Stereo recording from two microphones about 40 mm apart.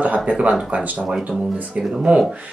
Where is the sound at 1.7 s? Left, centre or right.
Right.